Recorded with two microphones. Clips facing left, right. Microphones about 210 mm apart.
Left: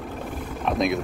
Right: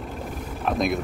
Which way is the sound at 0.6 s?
Centre (ahead or behind).